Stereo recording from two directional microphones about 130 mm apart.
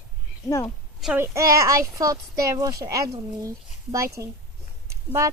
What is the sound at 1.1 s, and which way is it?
Speech, 25° right (ahead or behind).